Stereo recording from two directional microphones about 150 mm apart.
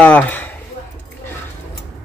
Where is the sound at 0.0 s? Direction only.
10° left (ahead or behind).